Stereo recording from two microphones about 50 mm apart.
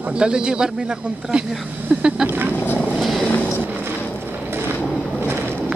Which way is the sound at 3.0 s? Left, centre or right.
Centre.